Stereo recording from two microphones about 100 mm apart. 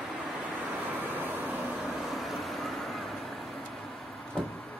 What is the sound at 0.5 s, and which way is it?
Vehicle, 15° right (ahead or behind).